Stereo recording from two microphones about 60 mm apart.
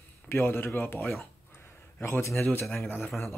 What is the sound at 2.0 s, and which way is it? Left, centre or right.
Speech, left.